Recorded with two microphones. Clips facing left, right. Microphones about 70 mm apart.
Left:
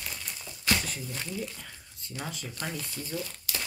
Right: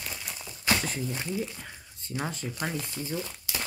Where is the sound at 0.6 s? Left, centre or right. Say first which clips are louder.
Right 2 dB; right.